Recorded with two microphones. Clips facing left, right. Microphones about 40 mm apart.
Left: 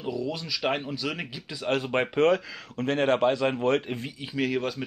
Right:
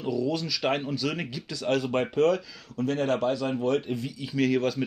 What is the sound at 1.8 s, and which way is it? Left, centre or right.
Speech, left.